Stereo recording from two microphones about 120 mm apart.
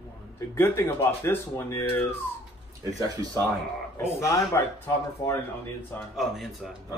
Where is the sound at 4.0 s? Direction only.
25° left (ahead or behind).